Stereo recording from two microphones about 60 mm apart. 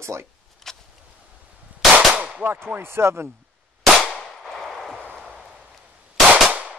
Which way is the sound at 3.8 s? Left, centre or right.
Centre.